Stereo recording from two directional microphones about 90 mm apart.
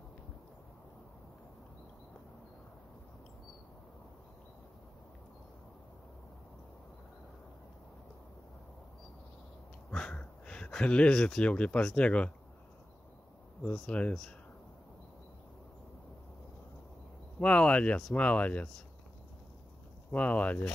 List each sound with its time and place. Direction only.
9.8 s speech: 10° left (ahead or behind)
13.7 s speech: 10° left (ahead or behind)
17.4 s speech: 15° left (ahead or behind)
20.1 s speech: 15° left (ahead or behind)